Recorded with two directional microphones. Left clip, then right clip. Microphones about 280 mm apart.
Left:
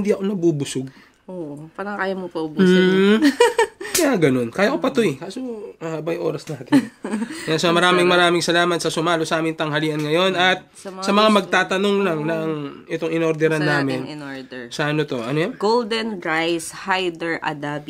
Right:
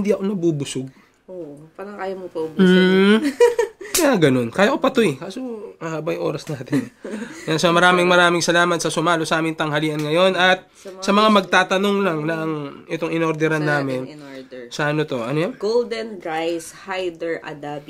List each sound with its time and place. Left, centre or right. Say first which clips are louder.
0.0 s speech: even; centre
1.8 s speech: left 4 dB; left
2.5 s speech: right 1 dB; centre
3.2 s speech: even; left
4.0 s speech: right 2 dB; centre
15.6 s speech: left 3 dB; left